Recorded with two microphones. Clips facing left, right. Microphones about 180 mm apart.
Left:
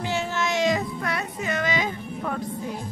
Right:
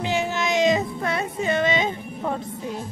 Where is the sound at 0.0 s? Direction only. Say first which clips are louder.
Right 2 dB; 15° right (ahead or behind).